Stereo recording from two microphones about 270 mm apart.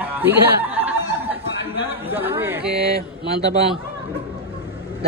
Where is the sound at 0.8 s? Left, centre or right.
Centre.